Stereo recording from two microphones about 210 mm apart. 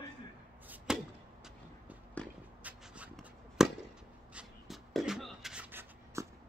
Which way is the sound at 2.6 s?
5° right (ahead or behind).